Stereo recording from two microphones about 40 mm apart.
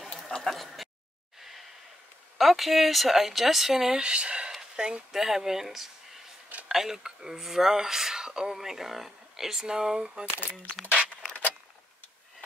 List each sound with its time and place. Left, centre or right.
0.4 s a sound: centre
2.3 s speech: centre; by 5.0 s right
5.1 s speech: centre